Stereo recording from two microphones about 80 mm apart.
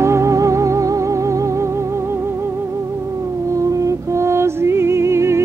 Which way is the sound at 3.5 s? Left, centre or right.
Right.